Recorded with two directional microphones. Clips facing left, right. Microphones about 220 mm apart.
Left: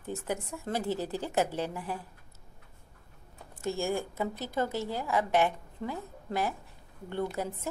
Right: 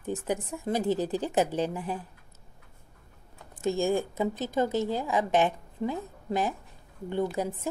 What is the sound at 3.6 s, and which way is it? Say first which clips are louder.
A woman's voice: right 5 dB; 20° right (ahead or behind).